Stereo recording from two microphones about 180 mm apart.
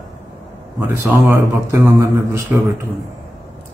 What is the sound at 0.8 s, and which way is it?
Speech, 15° right (ahead or behind).